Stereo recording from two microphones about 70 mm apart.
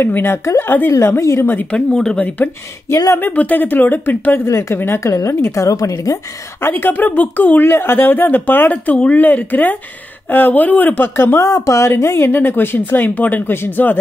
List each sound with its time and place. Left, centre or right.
0.0 s a woman's voice: left
0.9 s a woman's voice: left
1.7 s speech: centre
2.1 s speech: left
4.5 s a woman's voice: left
5.6 s a woman's voice: left
6.6 s speech: left